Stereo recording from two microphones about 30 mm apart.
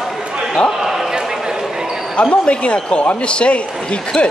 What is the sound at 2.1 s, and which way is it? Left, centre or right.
A man's voice, left.